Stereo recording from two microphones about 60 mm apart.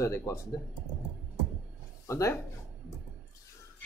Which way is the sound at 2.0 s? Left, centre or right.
Left.